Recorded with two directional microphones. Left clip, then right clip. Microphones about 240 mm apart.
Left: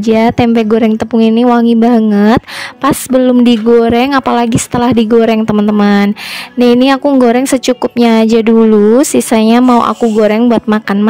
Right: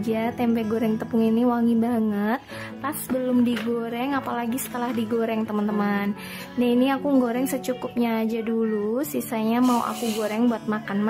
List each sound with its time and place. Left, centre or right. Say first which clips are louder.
0.0 s a woman's voice: left 16 dB; left